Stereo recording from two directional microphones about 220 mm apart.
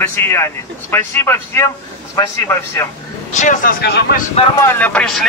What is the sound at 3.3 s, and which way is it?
Speech, 35° left (ahead or behind).